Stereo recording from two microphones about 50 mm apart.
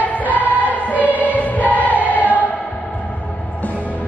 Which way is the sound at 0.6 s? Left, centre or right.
Right.